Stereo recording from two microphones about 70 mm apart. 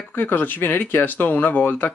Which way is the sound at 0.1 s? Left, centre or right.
Left.